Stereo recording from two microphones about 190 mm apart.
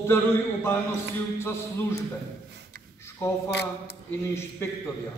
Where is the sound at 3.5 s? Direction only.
65° left (ahead or behind).